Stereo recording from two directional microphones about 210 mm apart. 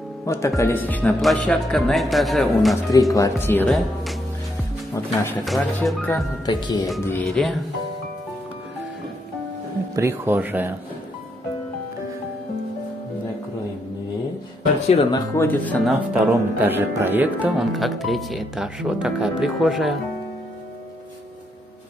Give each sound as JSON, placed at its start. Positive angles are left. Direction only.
{"t": 0.2, "sound": "speech", "side_deg": 15}
{"t": 2.9, "sound": "speech", "side_deg": 15}
{"t": 5.4, "sound": "speech", "side_deg": 0}
{"t": 6.0, "sound": "speech", "side_deg": 15}
{"t": 7.1, "sound": "speech", "side_deg": 5}
{"t": 9.9, "sound": "speech", "side_deg": -10}
{"t": 14.9, "sound": "speech", "side_deg": 20}